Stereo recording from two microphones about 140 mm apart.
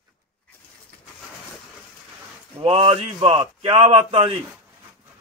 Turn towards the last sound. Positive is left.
turn(degrees=-45)  # may be behind; listen again after turning